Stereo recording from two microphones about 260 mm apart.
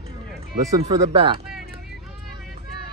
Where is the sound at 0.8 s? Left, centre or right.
Centre.